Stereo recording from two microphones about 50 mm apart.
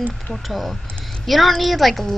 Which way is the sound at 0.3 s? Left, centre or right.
Centre.